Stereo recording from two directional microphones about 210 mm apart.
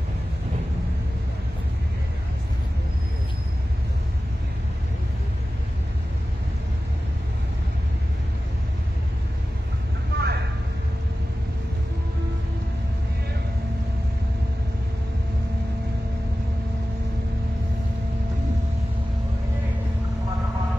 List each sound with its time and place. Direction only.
10.1 s vehicle: 50° right (ahead or behind)